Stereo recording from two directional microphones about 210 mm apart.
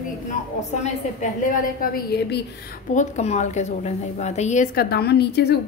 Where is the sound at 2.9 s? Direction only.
35° left (ahead or behind).